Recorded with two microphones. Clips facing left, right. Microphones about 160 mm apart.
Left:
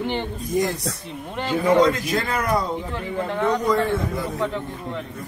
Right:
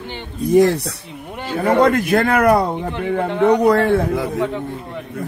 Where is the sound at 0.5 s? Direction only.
65° right (ahead or behind).